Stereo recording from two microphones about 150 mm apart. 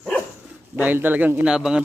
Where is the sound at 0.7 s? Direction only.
10° right (ahead or behind).